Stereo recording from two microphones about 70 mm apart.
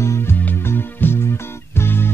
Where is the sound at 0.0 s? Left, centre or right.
Left.